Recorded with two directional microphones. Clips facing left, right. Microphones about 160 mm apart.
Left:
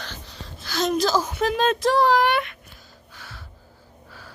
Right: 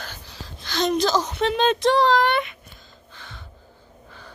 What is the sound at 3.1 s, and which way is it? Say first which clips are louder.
Gasp: even; 5° left (ahead or behind).